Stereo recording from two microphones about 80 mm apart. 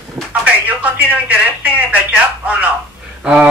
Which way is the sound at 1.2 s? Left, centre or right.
Centre.